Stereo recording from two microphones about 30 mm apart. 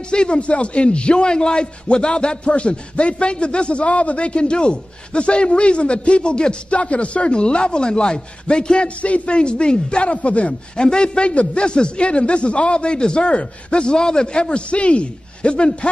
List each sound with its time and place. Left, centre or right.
0.1 s a man's voice: left
6.7 s a man's voice: left
8.8 s a man's voice: left
10.8 s a man's voice: left